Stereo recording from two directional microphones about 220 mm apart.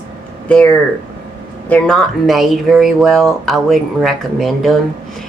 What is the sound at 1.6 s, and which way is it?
Speech, 5° left (ahead or behind).